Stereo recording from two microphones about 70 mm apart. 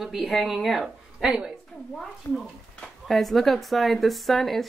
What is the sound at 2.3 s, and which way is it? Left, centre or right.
Speech, left.